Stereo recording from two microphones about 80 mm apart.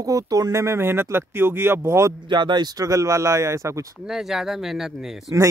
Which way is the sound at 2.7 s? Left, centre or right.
Right.